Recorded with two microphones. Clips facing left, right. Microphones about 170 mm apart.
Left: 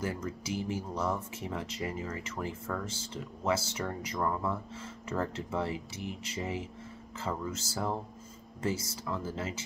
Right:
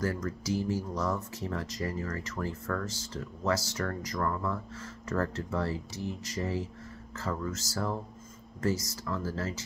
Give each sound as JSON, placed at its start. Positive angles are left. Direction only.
{"t": 0.6, "sound": "speech", "side_deg": 25}
{"t": 1.1, "sound": "speech", "side_deg": 15}